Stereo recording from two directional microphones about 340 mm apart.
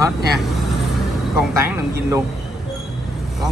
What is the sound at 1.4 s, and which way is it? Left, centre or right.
Speech, centre.